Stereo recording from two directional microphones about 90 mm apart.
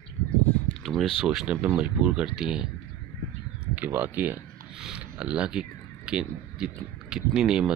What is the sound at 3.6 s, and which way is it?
Speech, 20° right (ahead or behind).